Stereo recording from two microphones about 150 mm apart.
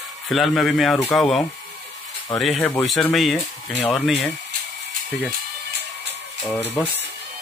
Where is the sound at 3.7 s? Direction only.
15° left (ahead or behind).